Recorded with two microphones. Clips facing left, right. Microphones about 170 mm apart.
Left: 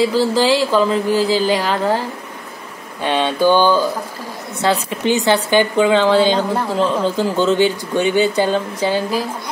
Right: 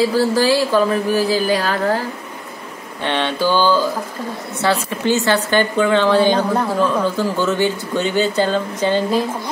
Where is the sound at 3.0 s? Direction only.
10° left (ahead or behind).